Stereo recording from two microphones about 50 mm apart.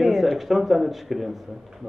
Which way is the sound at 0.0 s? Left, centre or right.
Centre.